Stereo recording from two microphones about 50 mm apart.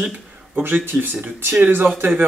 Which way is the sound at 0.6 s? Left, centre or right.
Right.